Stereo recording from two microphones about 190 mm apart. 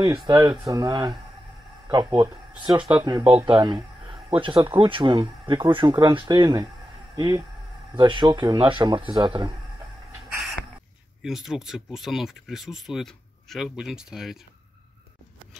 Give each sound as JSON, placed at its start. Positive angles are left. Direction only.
{"t": 0.0, "sound": "speech", "side_deg": -20}
{"t": 2.8, "sound": "speech", "side_deg": -10}
{"t": 3.1, "sound": "speech", "side_deg": -25}
{"t": 11.2, "sound": "speech", "side_deg": 0}